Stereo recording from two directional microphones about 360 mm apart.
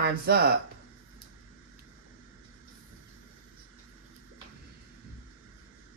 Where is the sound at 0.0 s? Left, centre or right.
Right.